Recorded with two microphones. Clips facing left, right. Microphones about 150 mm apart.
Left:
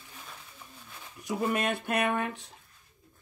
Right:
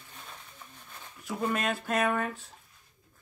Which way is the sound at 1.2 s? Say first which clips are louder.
Left 1 dB; 20° left (ahead or behind).